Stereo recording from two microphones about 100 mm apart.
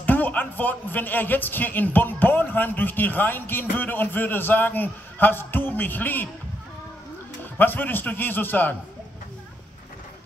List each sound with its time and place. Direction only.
0.0 s a man's voice: 15° left (ahead or behind)
7.5 s a man's voice: 20° left (ahead or behind)